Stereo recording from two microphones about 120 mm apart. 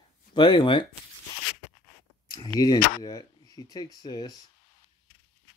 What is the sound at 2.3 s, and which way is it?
Speech, 35° left (ahead or behind).